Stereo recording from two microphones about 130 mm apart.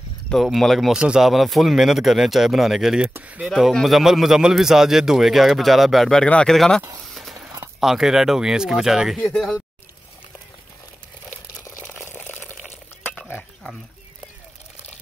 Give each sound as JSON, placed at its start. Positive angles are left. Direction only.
{"t": 0.3, "sound": "a man's voice", "side_deg": 0}
{"t": 3.4, "sound": "a man's voice", "side_deg": 0}
{"t": 7.2, "sound": "a sound", "side_deg": 0}
{"t": 7.8, "sound": "a man's voice", "side_deg": -5}
{"t": 9.2, "sound": "speech", "side_deg": 5}
{"t": 11.8, "sound": "a sound", "side_deg": 15}